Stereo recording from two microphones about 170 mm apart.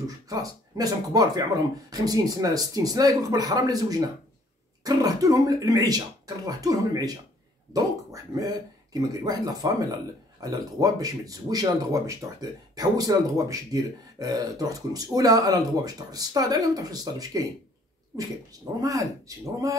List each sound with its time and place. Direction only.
0.0 s speech: 20° right (ahead or behind)